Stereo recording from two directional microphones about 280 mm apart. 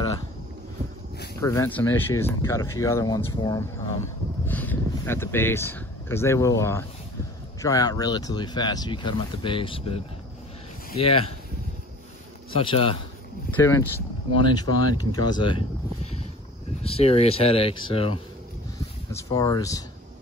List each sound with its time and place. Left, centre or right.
1.4 s speech: centre
12.5 s speech: centre